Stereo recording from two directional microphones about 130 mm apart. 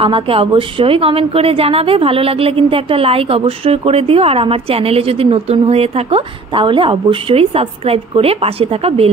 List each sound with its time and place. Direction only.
0.0 s a woman's voice: 45° right (ahead or behind)